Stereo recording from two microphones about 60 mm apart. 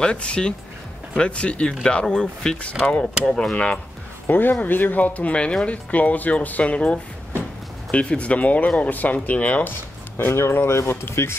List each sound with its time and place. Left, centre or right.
0.0 s speech: centre
3.5 s speech: left
4.3 s speech: left
10.1 s speech: left